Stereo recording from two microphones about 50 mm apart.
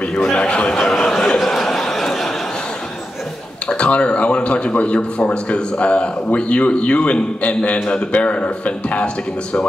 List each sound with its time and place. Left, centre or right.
0.1 s chuckle: centre
0.7 s a sound: centre
3.6 s speech: left